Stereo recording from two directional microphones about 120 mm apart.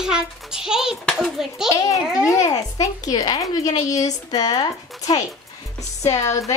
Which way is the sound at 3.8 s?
30° left (ahead or behind).